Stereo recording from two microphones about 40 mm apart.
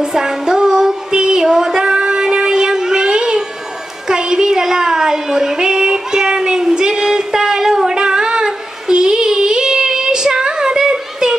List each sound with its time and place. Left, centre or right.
0.0 s music: centre
4.1 s child singing: centre